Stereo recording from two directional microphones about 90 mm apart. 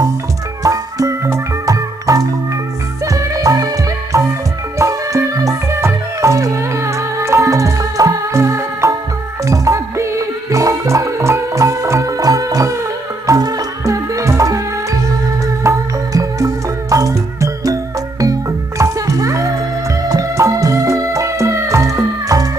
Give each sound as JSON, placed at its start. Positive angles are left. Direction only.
{"t": 0.7, "sound": "music", "side_deg": -35}